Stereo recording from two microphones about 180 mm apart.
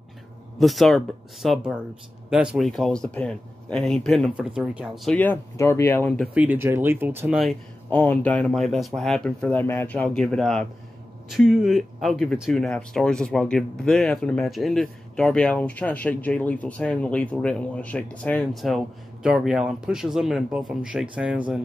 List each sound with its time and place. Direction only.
0.6 s speech: centre (ahead or behind)
6.2 s speech: 10° right (ahead or behind)
7.3 s speech: centre (ahead or behind)